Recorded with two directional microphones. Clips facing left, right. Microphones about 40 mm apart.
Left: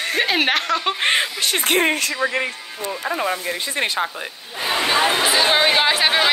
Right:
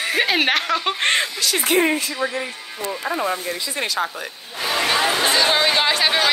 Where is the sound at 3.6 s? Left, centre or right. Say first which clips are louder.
Left 2 dB; left.